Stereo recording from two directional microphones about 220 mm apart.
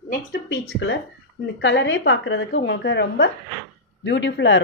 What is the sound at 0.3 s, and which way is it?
A woman's voice, 55° left (ahead or behind).